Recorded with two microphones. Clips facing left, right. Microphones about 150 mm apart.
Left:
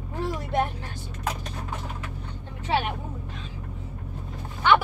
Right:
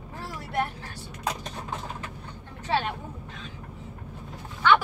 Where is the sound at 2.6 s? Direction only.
15° left (ahead or behind).